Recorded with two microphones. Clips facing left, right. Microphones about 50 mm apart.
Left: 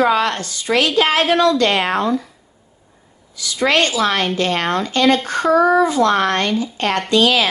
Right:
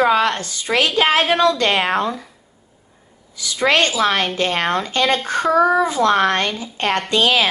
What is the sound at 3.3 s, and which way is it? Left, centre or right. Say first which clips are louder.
A woman's voice: even; right.